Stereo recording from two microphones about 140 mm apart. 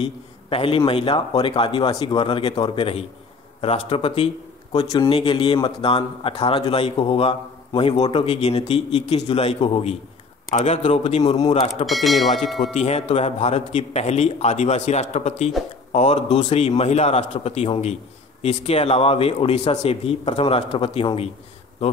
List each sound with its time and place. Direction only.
0.0 s a man's voice: 40° left (ahead or behind)
11.8 s speech: centre (ahead or behind)
12.7 s a man's voice: 50° left (ahead or behind)